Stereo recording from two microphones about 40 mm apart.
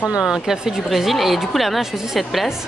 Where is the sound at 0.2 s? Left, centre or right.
Centre.